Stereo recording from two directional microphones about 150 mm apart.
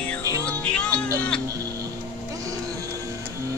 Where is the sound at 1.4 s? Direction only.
25° right (ahead or behind).